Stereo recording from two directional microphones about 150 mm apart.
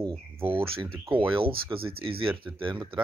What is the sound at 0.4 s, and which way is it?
Speech, 40° right (ahead or behind).